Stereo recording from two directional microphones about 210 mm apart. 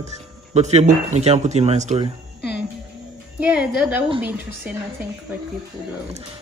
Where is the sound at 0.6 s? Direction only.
30° right (ahead or behind).